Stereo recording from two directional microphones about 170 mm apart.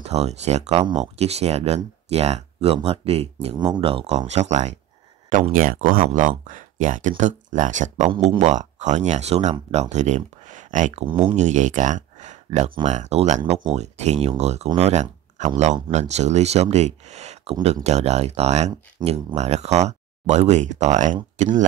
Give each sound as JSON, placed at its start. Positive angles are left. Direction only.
{"t": 0.0, "sound": "speech", "side_deg": -40}
{"t": 8.1, "sound": "speech", "side_deg": -30}
{"t": 8.5, "sound": "speech", "side_deg": -45}
{"t": 11.1, "sound": "speech", "side_deg": -30}
{"t": 11.3, "sound": "speech", "side_deg": -45}
{"t": 17.6, "sound": "speech", "side_deg": -25}
{"t": 17.8, "sound": "speech", "side_deg": -40}